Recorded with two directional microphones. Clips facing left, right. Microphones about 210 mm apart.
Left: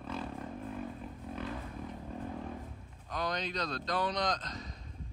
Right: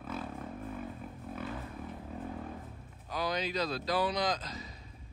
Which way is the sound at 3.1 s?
5° right (ahead or behind).